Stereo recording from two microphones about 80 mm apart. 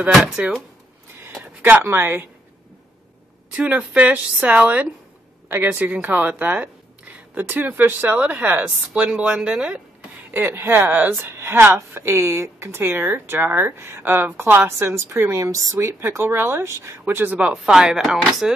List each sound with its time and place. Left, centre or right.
1.4 s speech: right
3.5 s speech: centre
10.3 s a woman's voice: right
15.4 s a woman's voice: right
17.4 s speech: centre